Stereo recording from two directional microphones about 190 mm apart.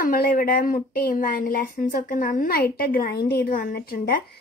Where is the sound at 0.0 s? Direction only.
50° left (ahead or behind).